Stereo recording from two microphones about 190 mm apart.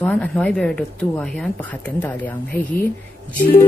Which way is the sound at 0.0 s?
5° left (ahead or behind).